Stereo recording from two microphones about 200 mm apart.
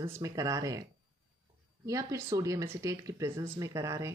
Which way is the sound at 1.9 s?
15° right (ahead or behind).